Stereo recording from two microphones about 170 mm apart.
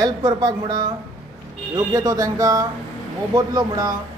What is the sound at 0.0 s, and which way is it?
Speech, 25° right (ahead or behind).